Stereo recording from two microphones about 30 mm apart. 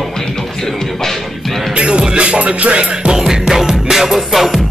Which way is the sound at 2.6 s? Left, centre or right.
Right.